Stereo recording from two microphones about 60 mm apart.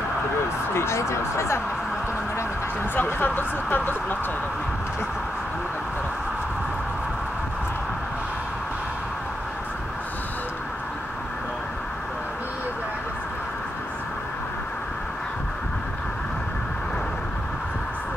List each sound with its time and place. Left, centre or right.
0.7 s speech: left
3.0 s speech: left